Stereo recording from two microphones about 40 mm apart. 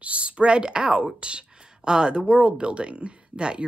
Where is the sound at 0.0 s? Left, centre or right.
Right.